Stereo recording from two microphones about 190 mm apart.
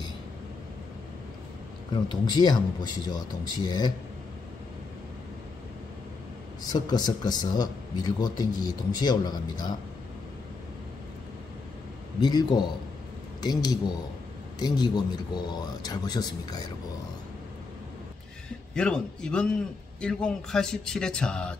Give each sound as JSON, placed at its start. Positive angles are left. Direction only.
{"t": 2.0, "sound": "speech", "side_deg": 20}
{"t": 6.7, "sound": "speech", "side_deg": 20}
{"t": 12.2, "sound": "speech", "side_deg": 20}
{"t": 18.8, "sound": "speech", "side_deg": 5}